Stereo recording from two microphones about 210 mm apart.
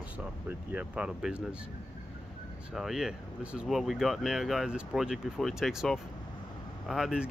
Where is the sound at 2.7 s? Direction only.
Centre (ahead or behind).